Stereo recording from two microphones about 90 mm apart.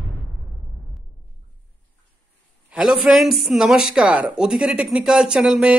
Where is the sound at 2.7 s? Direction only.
5° right (ahead or behind).